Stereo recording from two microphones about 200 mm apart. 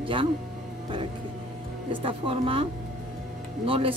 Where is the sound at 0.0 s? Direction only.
25° right (ahead or behind).